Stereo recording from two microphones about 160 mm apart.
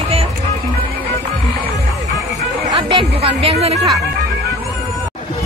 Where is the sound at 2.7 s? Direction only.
30° right (ahead or behind).